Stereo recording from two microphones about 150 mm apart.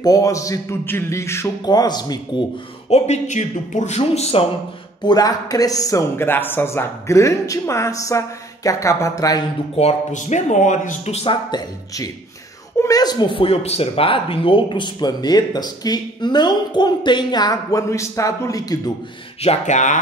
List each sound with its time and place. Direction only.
0.0 s speech: 25° left (ahead or behind)
2.9 s a man's voice: 50° left (ahead or behind)
5.0 s speech: 25° left (ahead or behind)
9.8 s a man's voice: 50° left (ahead or behind)
11.5 s speech: 25° left (ahead or behind)
19.4 s a man's voice: 50° left (ahead or behind)